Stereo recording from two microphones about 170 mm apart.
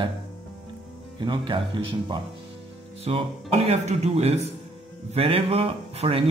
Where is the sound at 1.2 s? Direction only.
30° right (ahead or behind).